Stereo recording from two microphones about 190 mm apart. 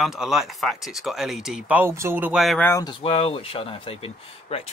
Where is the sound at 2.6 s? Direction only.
15° left (ahead or behind).